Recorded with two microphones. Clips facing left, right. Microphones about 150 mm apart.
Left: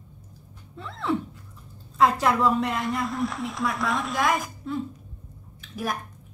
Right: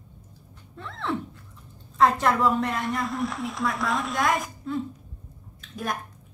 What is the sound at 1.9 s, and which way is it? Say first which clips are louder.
A woman's voice: even; centre (ahead or behind).